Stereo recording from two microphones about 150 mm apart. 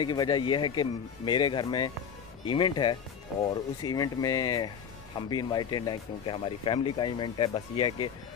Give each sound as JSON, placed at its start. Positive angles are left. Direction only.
{"t": 0.0, "sound": "speech", "side_deg": 30}